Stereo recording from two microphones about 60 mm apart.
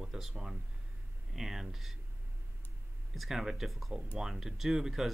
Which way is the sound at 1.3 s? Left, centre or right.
Centre.